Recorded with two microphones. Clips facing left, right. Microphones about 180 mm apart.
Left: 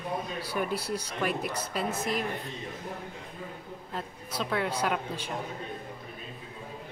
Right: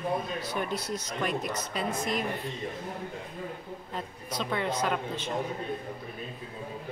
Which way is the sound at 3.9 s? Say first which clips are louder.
Even; 5° left (ahead or behind).